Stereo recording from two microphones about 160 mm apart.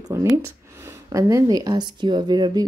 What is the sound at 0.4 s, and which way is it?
Speech, 20° right (ahead or behind).